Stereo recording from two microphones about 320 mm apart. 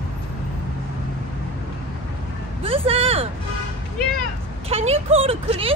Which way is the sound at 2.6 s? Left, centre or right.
Centre.